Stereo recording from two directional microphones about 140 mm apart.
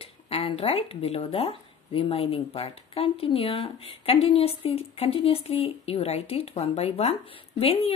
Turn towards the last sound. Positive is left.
turn(degrees=45)  # may be behind; listen again after turning